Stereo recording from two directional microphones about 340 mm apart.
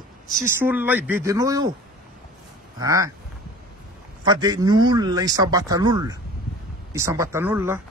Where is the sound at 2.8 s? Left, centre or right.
Centre.